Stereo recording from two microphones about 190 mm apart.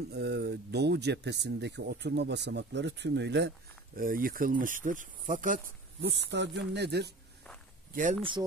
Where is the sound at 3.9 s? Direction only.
50° right (ahead or behind).